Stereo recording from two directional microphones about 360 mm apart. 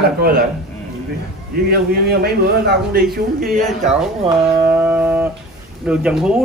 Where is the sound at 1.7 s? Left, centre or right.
Right.